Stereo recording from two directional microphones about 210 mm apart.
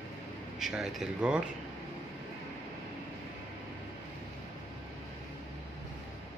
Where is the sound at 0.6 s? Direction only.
Centre (ahead or behind).